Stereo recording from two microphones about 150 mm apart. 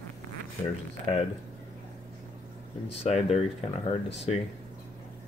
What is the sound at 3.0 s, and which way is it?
Speech, 45° left (ahead or behind).